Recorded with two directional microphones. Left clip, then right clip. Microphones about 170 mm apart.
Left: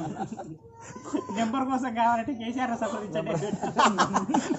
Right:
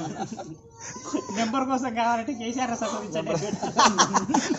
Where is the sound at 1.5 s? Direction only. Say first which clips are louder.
Right 3 dB; 5° right (ahead or behind).